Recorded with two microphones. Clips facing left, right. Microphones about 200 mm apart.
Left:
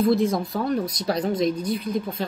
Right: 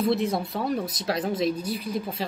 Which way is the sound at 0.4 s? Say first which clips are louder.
Left 3 dB; 5° right (ahead or behind).